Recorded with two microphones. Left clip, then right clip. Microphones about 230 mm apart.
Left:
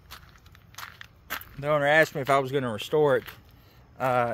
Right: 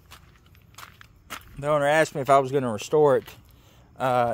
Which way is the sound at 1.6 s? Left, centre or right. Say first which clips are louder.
Right 1 dB; centre.